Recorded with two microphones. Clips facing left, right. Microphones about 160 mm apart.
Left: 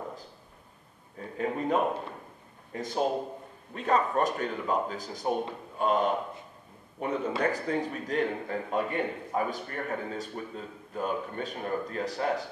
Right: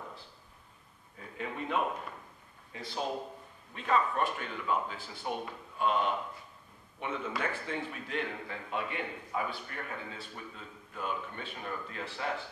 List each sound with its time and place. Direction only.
1.4 s a man's voice: 40° left (ahead or behind)